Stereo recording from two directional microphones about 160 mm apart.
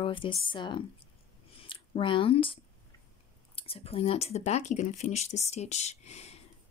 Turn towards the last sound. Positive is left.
turn(degrees=40)  # may be behind; listen again after turning